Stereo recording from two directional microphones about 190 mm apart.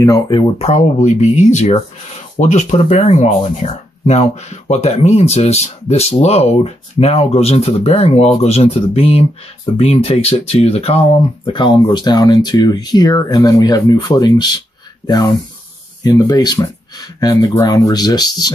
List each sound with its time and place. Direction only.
0.0 s speech: 20° left (ahead or behind)
16.0 s speech: 20° left (ahead or behind)